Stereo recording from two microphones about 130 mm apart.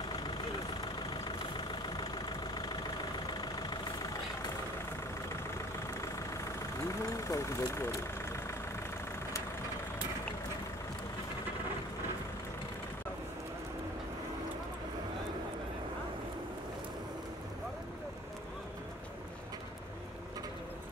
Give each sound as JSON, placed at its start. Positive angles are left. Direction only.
{"t": 2.0, "sound": "vehicle", "side_deg": 35}
{"t": 5.9, "sound": "vehicle", "side_deg": 25}